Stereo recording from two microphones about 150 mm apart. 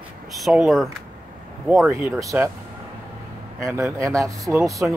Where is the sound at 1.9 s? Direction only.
20° right (ahead or behind).